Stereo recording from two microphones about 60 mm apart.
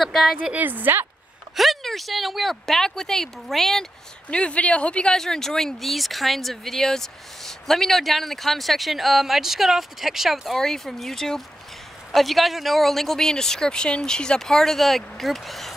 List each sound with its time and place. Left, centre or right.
0.0 s speech: centre
0.4 s a woman's voice: right
1.6 s speech: centre
4.3 s speech: centre
5.1 s speech: centre